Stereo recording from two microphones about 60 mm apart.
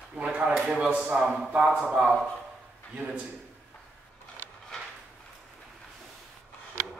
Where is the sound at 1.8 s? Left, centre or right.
Centre.